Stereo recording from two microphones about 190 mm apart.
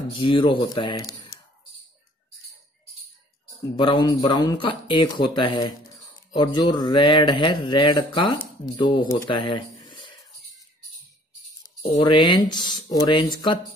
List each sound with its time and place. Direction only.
0.1 s a man's voice: 25° left (ahead or behind)
3.7 s a man's voice: 25° left (ahead or behind)
11.9 s a man's voice: 25° left (ahead or behind)